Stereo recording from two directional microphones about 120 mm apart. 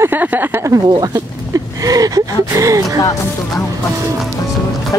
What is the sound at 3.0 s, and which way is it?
Speech, 30° left (ahead or behind).